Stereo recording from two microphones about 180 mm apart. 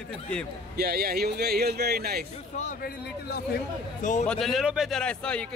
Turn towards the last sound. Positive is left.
turn(degrees=5)  # may be behind; listen again after turning